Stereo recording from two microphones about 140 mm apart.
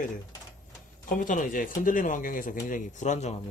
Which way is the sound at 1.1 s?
75° left (ahead or behind).